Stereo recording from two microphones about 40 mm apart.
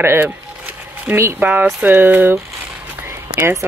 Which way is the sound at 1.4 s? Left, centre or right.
Right.